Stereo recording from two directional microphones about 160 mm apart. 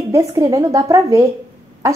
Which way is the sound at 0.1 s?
20° right (ahead or behind).